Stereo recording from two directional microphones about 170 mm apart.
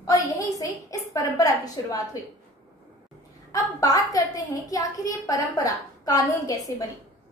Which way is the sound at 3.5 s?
20° left (ahead or behind).